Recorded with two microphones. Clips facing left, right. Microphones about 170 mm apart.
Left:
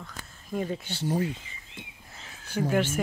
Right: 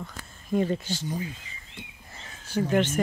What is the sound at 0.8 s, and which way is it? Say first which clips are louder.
Speech: left 4 dB; 65° left (ahead or behind).